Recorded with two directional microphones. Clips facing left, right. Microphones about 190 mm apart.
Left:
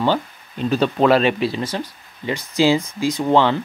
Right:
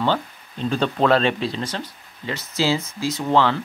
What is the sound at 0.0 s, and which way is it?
Speech, 10° left (ahead or behind).